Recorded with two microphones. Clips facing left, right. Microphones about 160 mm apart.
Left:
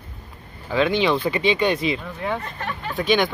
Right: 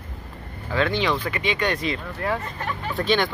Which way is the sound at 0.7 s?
20° left (ahead or behind).